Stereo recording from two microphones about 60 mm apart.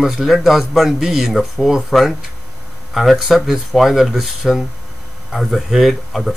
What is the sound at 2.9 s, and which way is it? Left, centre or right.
Speech, centre.